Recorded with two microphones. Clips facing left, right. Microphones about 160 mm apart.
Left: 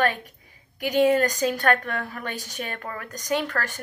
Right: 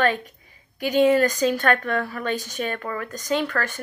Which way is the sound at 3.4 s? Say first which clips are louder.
Right 3 dB; 40° left (ahead or behind).